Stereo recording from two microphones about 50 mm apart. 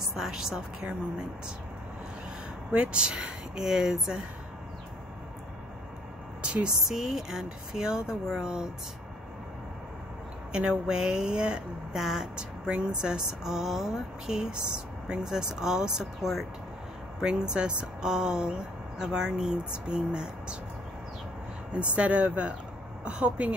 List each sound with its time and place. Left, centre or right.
0.1 s speech: centre
2.7 s speech: right
6.4 s a woman's voice: right
6.9 s speech: centre
10.5 s speech: centre
17.2 s speech: centre
21.7 s speech: right